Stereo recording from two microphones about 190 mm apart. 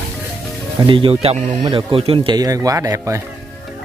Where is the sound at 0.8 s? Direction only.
25° right (ahead or behind).